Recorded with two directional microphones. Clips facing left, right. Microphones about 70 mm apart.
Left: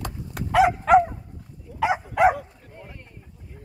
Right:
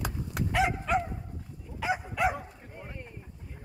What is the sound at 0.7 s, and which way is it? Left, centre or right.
Dog, left.